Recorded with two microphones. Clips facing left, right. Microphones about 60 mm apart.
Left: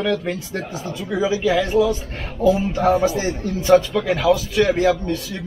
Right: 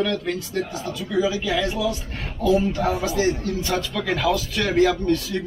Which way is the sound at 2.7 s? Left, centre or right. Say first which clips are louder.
Left 5 dB; left.